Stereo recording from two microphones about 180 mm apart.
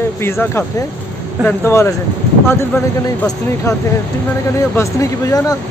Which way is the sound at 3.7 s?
20° left (ahead or behind).